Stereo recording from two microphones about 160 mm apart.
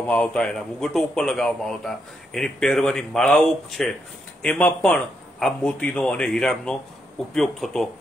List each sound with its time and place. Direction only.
0.0 s a man's voice: 10° left (ahead or behind)